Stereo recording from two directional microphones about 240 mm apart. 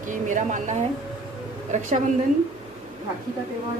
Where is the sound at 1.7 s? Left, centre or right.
Right.